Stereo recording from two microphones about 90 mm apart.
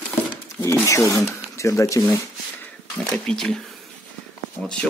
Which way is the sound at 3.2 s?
5° left (ahead or behind).